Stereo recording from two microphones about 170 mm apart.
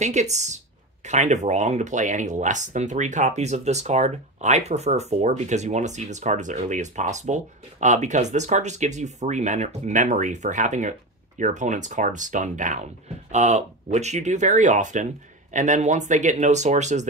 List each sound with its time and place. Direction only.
0.0 s speech: 45° right (ahead or behind)